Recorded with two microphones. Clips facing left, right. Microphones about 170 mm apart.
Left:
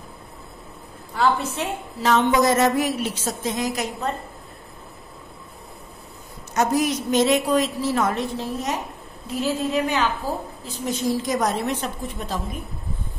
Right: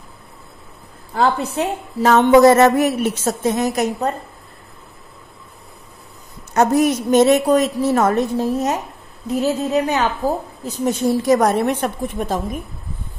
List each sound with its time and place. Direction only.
1.1 s a woman's voice: 35° right (ahead or behind)
6.5 s a woman's voice: 55° right (ahead or behind)